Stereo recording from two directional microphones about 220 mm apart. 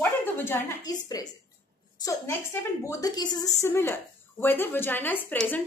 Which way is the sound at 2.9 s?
15° left (ahead or behind).